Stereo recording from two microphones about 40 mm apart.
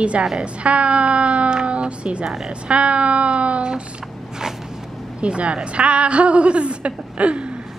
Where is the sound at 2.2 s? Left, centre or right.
Centre.